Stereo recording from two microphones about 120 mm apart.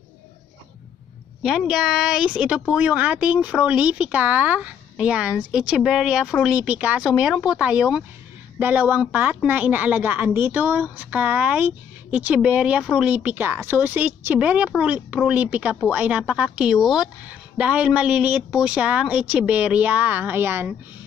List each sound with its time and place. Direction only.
1.4 s a woman's voice: 5° right (ahead or behind); by 20.7 s 20° right (ahead or behind)